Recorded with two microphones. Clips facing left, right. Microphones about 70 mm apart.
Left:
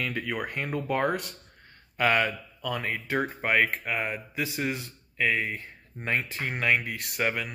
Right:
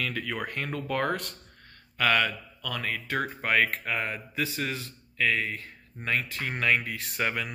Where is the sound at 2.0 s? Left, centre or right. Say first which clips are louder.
Left 1 dB; left.